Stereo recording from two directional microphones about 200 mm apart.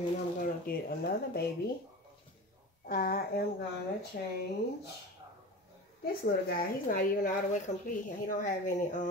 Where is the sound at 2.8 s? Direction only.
50° left (ahead or behind).